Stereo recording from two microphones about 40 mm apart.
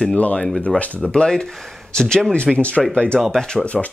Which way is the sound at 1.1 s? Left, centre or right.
Left.